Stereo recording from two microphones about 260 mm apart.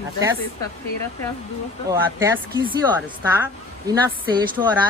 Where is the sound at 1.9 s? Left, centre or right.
Centre.